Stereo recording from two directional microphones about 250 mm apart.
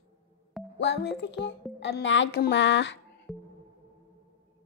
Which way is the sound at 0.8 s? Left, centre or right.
Left.